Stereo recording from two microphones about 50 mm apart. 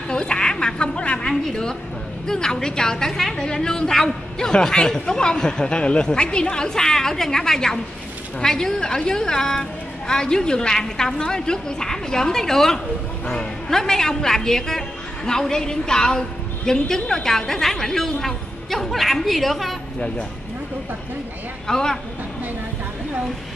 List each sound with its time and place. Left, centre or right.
0.1 s sheep: centre
1.5 s a woman's voice: centre
21.6 s a woman's voice: centre